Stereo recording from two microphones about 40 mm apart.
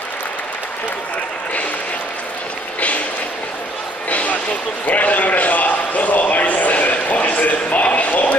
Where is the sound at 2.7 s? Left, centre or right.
Left.